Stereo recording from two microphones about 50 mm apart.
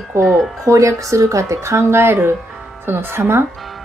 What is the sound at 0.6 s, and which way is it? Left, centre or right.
Speech, right.